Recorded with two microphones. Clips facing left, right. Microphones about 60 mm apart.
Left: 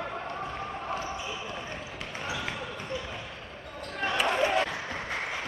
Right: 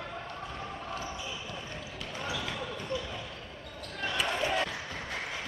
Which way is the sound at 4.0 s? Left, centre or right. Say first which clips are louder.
Left 5 dB; left.